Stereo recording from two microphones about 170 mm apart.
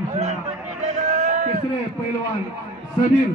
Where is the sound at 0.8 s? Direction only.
45° right (ahead or behind).